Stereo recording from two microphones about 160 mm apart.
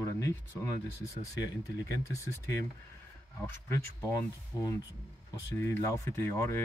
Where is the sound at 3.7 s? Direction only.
20° left (ahead or behind).